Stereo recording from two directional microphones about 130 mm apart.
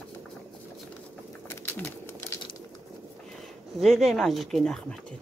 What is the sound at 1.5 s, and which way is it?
Pigeon, 15° left (ahead or behind).